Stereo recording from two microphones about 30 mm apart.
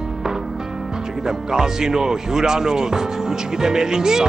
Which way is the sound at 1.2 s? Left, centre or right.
Centre.